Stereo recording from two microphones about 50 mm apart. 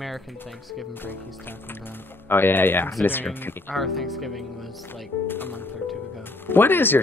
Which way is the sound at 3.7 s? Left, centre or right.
Centre.